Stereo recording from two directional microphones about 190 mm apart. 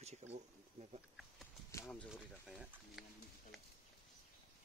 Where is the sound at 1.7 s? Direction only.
10° left (ahead or behind).